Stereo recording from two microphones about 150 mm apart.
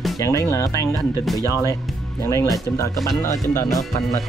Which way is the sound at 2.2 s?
20° left (ahead or behind).